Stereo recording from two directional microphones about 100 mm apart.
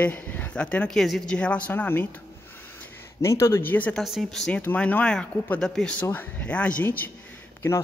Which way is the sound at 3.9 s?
Centre (ahead or behind).